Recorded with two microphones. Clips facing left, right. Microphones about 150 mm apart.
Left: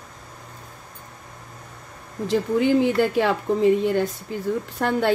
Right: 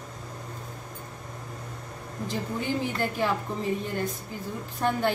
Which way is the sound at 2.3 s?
90° left.